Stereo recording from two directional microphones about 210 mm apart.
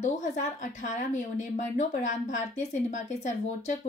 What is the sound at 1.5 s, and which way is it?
Speech, 35° left (ahead or behind).